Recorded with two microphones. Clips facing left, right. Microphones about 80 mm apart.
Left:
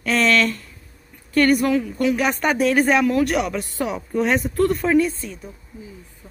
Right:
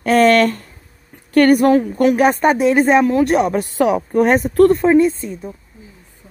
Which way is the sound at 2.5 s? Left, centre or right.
Right.